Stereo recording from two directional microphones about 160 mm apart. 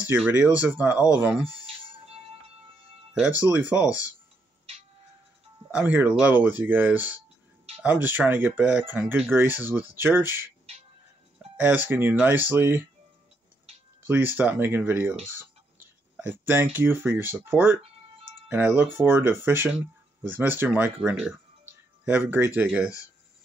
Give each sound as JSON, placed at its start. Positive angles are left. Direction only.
{"t": 0.1, "sound": "speech", "side_deg": -10}
{"t": 1.5, "sound": "music", "side_deg": -35}
{"t": 3.5, "sound": "speech", "side_deg": -10}
{"t": 3.8, "sound": "speech", "side_deg": 20}
{"t": 5.8, "sound": "speech", "side_deg": -10}
{"t": 11.5, "sound": "speech", "side_deg": -10}
{"t": 14.0, "sound": "speech", "side_deg": -10}